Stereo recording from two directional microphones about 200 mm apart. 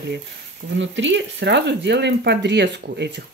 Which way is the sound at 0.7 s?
65° right (ahead or behind).